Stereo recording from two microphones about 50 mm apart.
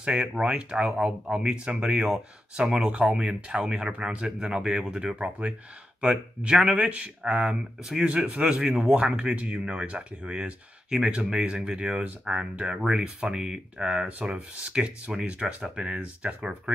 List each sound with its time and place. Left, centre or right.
0.0 s speech: centre
6.7 s speech: right
15.8 s speech: right